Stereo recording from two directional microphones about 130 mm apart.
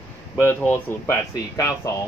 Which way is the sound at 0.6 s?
15° left (ahead or behind).